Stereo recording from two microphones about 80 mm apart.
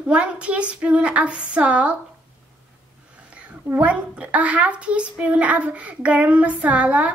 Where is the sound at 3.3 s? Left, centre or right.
Centre.